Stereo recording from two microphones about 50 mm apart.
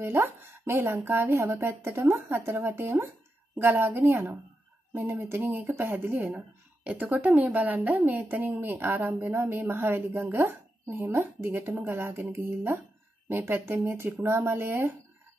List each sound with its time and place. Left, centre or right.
0.0 s a woman's voice: right
6.2 s a woman's voice: right
11.4 s a woman's voice: right
12.3 s a woman's voice: right